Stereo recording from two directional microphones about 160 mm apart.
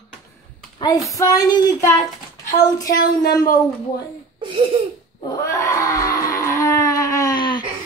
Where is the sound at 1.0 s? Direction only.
20° left (ahead or behind).